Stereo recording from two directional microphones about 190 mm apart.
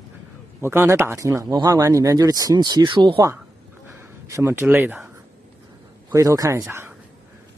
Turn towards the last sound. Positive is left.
turn(degrees=-10)  # may be behind; listen again after turning